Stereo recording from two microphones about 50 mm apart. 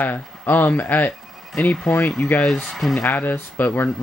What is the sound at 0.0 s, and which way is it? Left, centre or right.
Speech, left.